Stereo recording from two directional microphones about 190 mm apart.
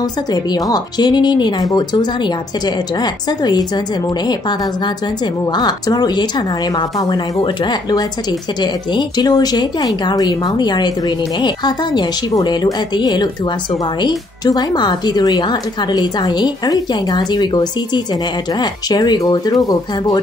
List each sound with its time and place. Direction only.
0.0 s speech: 20° left (ahead or behind)